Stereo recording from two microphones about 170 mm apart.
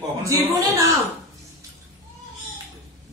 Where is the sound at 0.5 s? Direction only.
20° right (ahead or behind).